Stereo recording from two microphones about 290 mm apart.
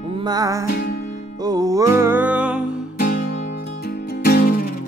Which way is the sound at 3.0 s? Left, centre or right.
Left.